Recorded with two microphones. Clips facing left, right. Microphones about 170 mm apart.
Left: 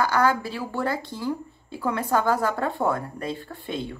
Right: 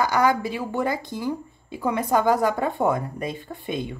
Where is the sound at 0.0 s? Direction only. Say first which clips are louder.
Right 1 dB; 15° right (ahead or behind).